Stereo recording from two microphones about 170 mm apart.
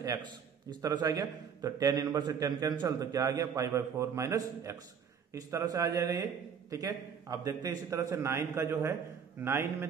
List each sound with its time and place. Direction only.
0.7 s a man's voice: 25° right (ahead or behind)